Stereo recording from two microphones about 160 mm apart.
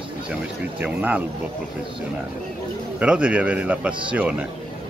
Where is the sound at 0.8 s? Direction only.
10° right (ahead or behind).